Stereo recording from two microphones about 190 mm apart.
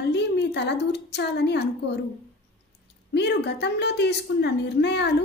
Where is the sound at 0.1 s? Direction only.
60° left (ahead or behind).